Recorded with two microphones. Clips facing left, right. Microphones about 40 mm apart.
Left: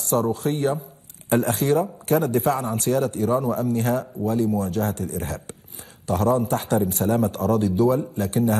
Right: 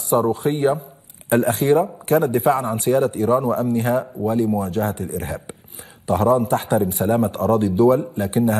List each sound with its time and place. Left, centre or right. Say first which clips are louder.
0.0 s a man's voice: right 4 dB; centre